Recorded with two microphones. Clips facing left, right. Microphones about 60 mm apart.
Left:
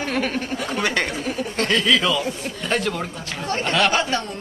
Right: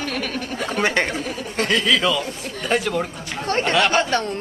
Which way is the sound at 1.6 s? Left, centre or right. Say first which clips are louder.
Right 1 dB; centre.